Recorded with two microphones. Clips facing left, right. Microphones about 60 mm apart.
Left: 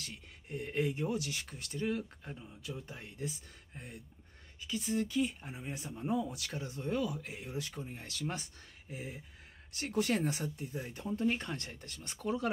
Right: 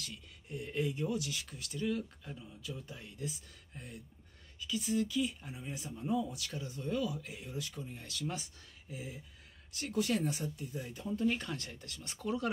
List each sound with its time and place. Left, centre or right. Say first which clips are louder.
0.0 s speech: even; left
2.6 s speech: left 2 dB; left
4.6 s speech: right 1 dB; left
7.7 s speech: left 1 dB; left
11.2 s speech: even; centre
11.8 s speech: even; left